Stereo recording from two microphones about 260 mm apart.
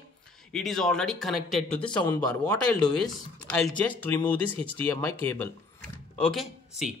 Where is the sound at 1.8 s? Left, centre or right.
Centre.